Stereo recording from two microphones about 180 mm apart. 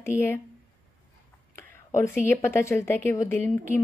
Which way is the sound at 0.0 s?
15° left (ahead or behind).